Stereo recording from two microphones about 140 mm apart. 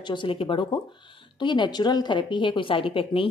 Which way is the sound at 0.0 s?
35° left (ahead or behind).